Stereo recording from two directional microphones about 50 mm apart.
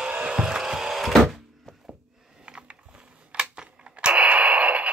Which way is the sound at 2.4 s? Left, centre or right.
Centre.